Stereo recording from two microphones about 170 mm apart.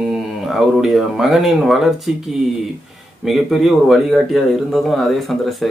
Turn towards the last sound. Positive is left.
turn(degrees=0)  # may be behind; listen again after turning